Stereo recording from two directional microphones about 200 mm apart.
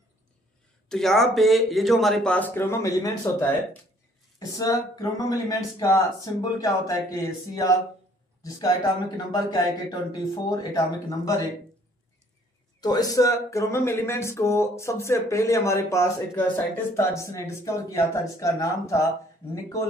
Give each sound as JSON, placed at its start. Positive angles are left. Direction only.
{"t": 0.8, "sound": "speech", "side_deg": 0}
{"t": 12.8, "sound": "speech", "side_deg": 20}